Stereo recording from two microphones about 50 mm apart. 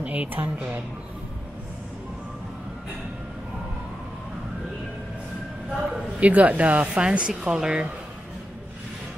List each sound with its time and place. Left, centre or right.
0.0 s speech: right
5.9 s a sound: centre
6.2 s speech: right